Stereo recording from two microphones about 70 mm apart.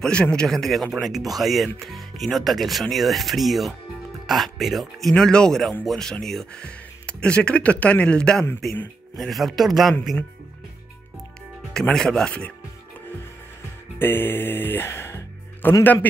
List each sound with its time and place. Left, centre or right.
0.0 s a man's voice: centre
9.1 s speech: centre
11.9 s a man's voice: centre
13.9 s speech: left
15.8 s a man's voice: left